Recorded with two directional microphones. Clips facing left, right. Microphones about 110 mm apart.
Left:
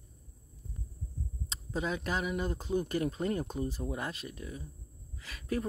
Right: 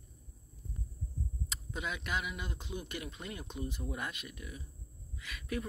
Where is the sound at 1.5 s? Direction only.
35° left (ahead or behind).